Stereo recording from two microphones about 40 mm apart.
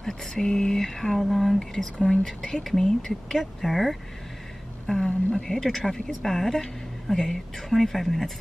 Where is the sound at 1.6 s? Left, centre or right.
Centre.